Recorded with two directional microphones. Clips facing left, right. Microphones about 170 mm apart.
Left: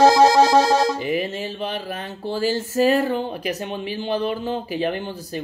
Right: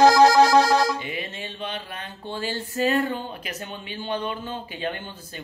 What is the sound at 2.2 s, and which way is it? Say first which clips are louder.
Speech: left 8 dB; 40° left (ahead or behind).